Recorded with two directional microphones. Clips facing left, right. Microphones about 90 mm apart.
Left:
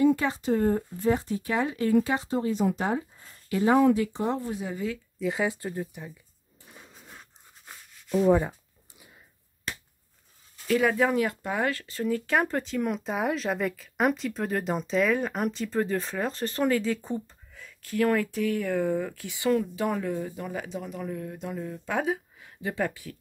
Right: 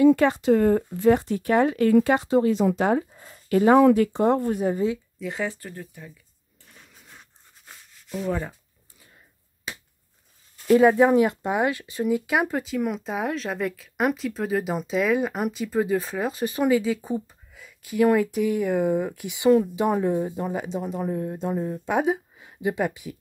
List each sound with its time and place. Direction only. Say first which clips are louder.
0.0 s speech: right 6 dB; 70° right (ahead or behind); by 4.7 s 50° right (ahead or behind)
5.2 s speech: left 3 dB; 5° left (ahead or behind)
5.5 s speech: left 5 dB; 15° left (ahead or behind)
6.6 s a sound: left 3 dB; 15° left (ahead or behind)
7.1 s a sound: left 1 dB; 5° left (ahead or behind)
8.3 s speech: left 5 dB; 15° left (ahead or behind)
10.7 s speech: right 7 dB; 30° right (ahead or behind)
21.8 s speech: right 4 dB; 20° right (ahead or behind)